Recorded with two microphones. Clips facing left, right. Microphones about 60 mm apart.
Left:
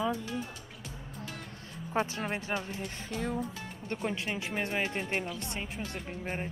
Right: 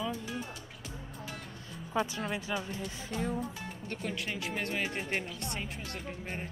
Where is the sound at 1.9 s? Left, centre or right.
Left.